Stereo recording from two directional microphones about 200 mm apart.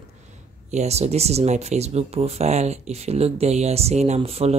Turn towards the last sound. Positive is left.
turn(degrees=-30)  # may be behind; listen again after turning